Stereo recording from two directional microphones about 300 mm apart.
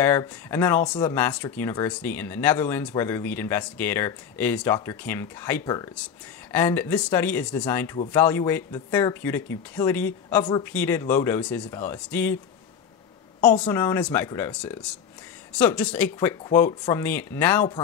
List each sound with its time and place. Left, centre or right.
0.0 s speech: centre
13.4 s speech: centre